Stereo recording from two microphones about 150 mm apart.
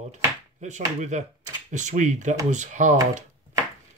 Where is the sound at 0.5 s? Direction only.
50° right (ahead or behind).